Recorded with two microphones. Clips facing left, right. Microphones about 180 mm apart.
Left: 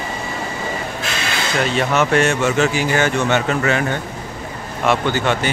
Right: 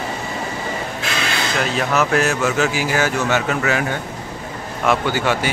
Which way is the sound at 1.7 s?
Centre (ahead or behind).